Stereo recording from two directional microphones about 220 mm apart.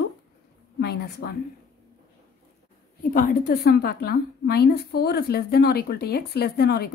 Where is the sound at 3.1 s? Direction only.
40° left (ahead or behind).